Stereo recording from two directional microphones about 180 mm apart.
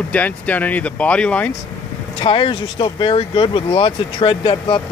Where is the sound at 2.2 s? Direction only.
30° left (ahead or behind).